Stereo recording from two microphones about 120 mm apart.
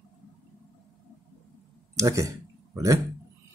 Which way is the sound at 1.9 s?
25° right (ahead or behind).